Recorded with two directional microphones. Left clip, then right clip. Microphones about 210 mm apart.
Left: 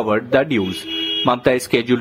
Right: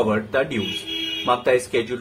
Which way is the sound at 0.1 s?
40° left (ahead or behind).